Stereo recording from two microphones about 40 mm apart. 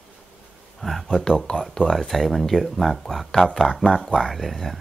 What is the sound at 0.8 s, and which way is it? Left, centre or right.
Speech, centre.